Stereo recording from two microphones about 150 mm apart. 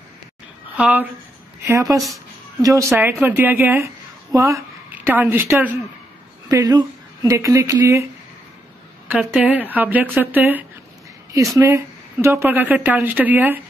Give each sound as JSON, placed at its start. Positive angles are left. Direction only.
{"t": 0.7, "sound": "speech", "side_deg": -10}
{"t": 1.7, "sound": "speech", "side_deg": -20}
{"t": 2.9, "sound": "a woman's voice", "side_deg": -10}
{"t": 6.5, "sound": "speech", "side_deg": -25}